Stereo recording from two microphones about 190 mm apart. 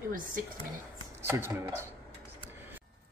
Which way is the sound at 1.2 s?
15° right (ahead or behind).